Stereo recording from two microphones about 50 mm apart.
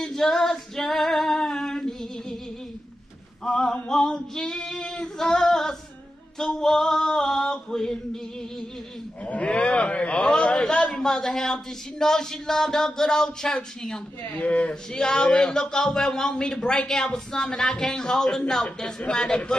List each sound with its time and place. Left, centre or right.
0.0 s female singing: centre
3.4 s a sound: centre
4.6 s child singing: centre
5.3 s female singing: centre
6.3 s a sound: centre
9.2 s livestock: left
11.0 s speech: centre
14.3 s speech: left
14.7 s speech: centre